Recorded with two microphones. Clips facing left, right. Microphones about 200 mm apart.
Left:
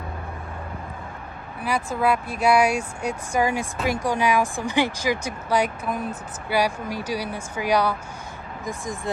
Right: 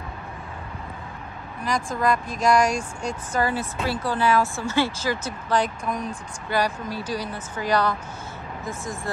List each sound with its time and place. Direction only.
1.6 s speech: 10° left (ahead or behind)